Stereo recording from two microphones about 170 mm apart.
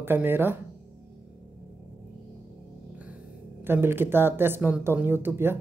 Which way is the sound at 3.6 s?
15° right (ahead or behind).